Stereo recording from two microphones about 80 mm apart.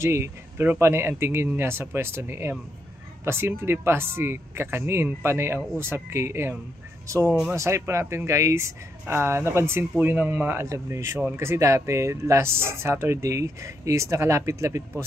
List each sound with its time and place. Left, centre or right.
0.0 s speech: right
7.5 s speech: right